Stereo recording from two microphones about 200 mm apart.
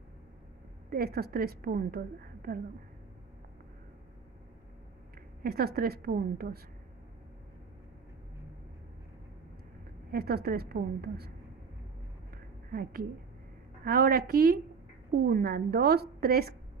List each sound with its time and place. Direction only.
0.8 s a woman's voice: 45° right (ahead or behind)
5.4 s a woman's voice: 50° right (ahead or behind)
10.1 s a woman's voice: 50° right (ahead or behind)
13.8 s a woman's voice: 50° right (ahead or behind)